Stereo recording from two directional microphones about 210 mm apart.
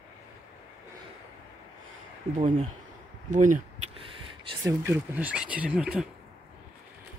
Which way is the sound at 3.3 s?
40° right (ahead or behind).